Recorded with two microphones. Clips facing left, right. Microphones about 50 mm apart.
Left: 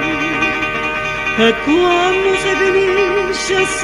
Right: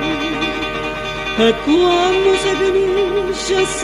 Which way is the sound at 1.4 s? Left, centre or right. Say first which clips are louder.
Even; left.